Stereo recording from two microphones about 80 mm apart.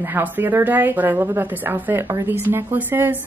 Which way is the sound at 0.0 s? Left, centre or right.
Right.